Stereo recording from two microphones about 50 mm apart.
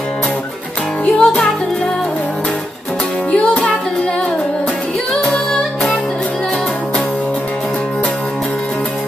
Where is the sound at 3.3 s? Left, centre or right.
Left.